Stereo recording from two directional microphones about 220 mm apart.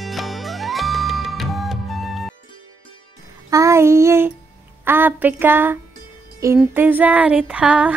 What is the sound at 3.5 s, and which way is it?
Child singing, 15° right (ahead or behind).